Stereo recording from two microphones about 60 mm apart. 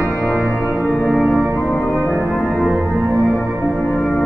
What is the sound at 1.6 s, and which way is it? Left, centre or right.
Music, left.